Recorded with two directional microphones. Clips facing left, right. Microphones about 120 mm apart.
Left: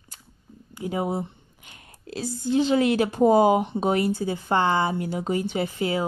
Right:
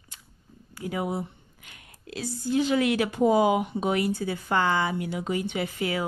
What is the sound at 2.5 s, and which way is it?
Speech, 30° left (ahead or behind).